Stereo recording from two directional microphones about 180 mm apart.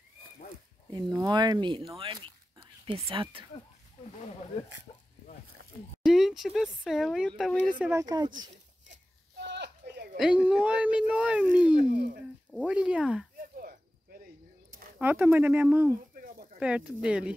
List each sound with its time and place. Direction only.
1.2 s speech: 25° right (ahead or behind)
4.9 s speech: 25° left (ahead or behind)
6.0 s speech: centre (ahead or behind)
7.8 s speech: 15° right (ahead or behind)
9.5 s a sound: 70° right (ahead or behind)
10.1 s speech: 5° right (ahead or behind)
11.9 s speech: 50° right (ahead or behind)
12.6 s speech: 5° right (ahead or behind)
13.4 s a sound: 55° right (ahead or behind)
15.0 s speech: 10° right (ahead or behind)